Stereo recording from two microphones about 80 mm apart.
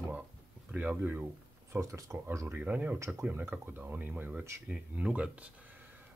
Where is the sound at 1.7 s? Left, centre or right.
Right.